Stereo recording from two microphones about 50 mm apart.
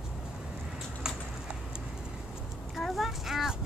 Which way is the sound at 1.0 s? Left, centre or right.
Centre.